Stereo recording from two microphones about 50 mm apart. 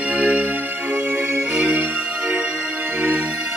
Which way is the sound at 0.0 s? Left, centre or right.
Right.